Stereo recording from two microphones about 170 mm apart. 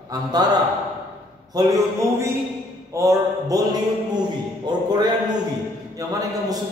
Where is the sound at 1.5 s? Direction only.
20° right (ahead or behind).